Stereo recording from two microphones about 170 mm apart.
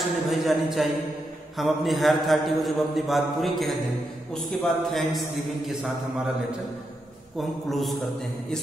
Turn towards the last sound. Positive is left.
turn(degrees=0)  # may be behind; listen again after turning